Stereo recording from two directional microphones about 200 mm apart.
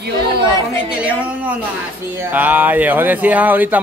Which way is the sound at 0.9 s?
5° right (ahead or behind).